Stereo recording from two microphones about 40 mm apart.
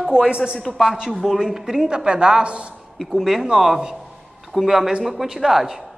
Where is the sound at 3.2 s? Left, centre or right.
Centre.